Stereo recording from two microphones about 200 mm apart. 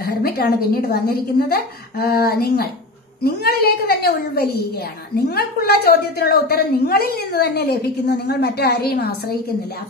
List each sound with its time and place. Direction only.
0.0 s a woman's voice: 50° left (ahead or behind)